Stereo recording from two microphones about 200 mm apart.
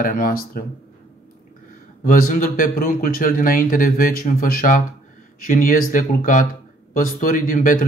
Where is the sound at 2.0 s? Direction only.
45° left (ahead or behind).